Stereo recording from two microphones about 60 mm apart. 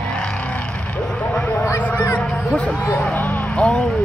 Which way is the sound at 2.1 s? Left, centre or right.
Left.